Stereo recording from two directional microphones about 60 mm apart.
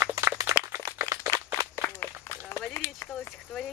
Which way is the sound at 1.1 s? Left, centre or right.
Left.